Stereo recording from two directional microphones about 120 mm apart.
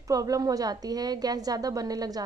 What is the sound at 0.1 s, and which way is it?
A woman's voice, 30° right (ahead or behind).